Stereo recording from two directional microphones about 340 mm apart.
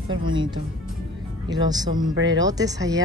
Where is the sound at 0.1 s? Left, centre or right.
Centre.